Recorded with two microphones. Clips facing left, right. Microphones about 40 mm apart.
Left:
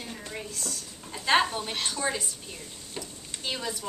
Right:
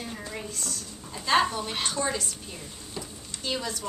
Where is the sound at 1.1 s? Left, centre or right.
Left.